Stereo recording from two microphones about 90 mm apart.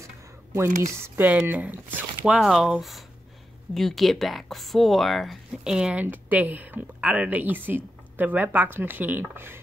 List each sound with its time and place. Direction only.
0.6 s speech: 30° right (ahead or behind)
2.2 s speech: 5° right (ahead or behind)
3.7 s speech: centre (ahead or behind); by 9.6 s 25° right (ahead or behind)